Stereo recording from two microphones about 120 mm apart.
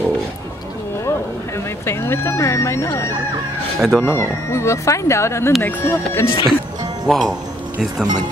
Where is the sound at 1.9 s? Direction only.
20° left (ahead or behind).